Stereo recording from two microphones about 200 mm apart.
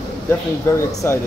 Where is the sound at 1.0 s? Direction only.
10° left (ahead or behind).